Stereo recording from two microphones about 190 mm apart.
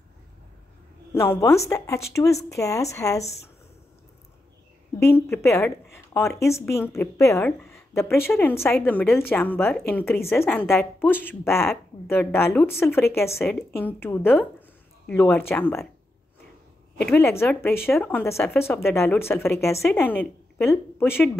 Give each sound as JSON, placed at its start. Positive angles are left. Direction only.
{"t": 1.1, "sound": "a woman's voice", "side_deg": 15}
{"t": 5.0, "sound": "a woman's voice", "side_deg": 15}
{"t": 17.1, "sound": "a woman's voice", "side_deg": 10}